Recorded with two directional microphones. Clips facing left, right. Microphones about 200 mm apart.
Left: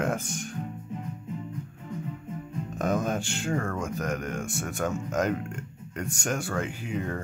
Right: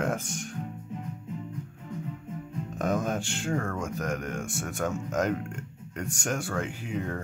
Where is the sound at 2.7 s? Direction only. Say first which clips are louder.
Left 1 dB; centre (ahead or behind).